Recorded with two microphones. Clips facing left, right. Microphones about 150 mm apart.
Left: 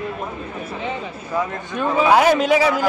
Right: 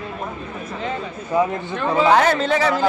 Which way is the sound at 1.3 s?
15° right (ahead or behind).